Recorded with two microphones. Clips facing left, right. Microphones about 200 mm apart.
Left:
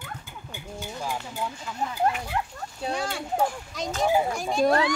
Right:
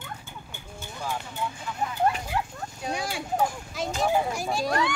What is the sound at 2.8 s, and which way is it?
A child's voice, 10° right (ahead or behind).